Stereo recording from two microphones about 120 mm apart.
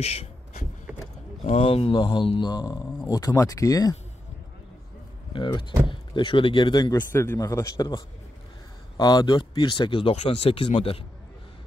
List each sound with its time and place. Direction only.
0.0 s speech: 60° left (ahead or behind)
1.6 s a man's voice: 50° left (ahead or behind); by 3.9 s 30° left (ahead or behind)
5.3 s speech: 40° left (ahead or behind)
7.1 s a man's voice: 20° left (ahead or behind); by 10.1 s 45° left (ahead or behind)
10.1 s speech: 55° left (ahead or behind)